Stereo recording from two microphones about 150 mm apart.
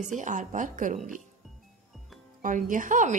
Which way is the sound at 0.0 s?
55° right (ahead or behind).